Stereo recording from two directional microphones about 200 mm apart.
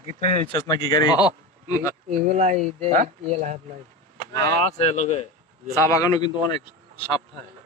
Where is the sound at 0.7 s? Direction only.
20° left (ahead or behind).